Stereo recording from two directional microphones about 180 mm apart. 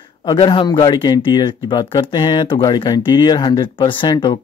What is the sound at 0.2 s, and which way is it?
Speech, 25° left (ahead or behind).